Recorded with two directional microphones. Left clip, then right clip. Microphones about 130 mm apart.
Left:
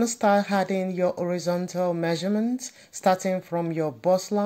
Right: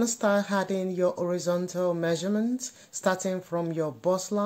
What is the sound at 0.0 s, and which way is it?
Speech, 5° left (ahead or behind).